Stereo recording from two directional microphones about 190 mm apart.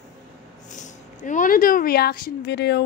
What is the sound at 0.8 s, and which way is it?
Speech, 40° left (ahead or behind).